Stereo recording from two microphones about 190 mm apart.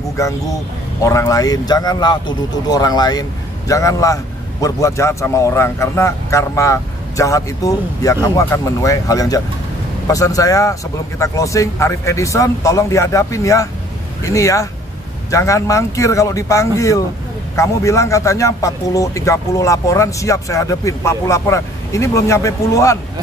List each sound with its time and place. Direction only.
1.0 s speech: 15° left (ahead or behind)